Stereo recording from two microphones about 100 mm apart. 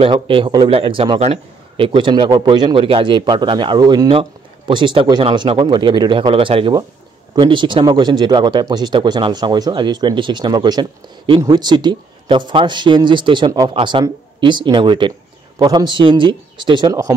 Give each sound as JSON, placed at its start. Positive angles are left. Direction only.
{"t": 0.1, "sound": "speech", "side_deg": -60}
{"t": 1.2, "sound": "a sound", "side_deg": -90}
{"t": 1.9, "sound": "speech", "side_deg": -50}
{"t": 4.1, "sound": "speech", "side_deg": -60}
{"t": 7.3, "sound": "speech", "side_deg": -55}